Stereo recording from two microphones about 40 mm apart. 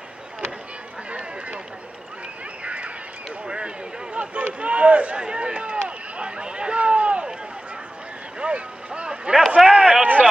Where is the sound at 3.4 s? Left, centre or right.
Right.